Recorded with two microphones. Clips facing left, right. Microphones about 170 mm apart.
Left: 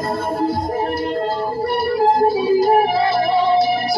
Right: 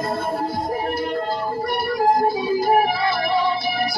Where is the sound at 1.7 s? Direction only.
30° left (ahead or behind).